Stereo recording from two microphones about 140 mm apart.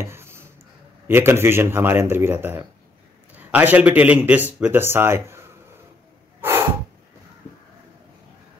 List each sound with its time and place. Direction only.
0.0 s a sound: 15° right (ahead or behind)
1.0 s speech: 15° right (ahead or behind)
6.4 s snort: 15° right (ahead or behind)